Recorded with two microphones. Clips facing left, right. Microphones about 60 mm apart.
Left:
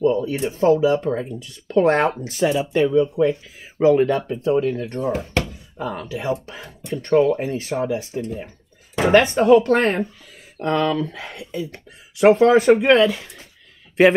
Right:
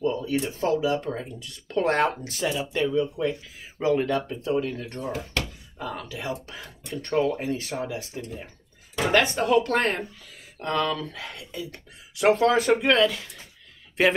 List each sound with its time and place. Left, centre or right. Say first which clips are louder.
0.0 s speech: left 6 dB; left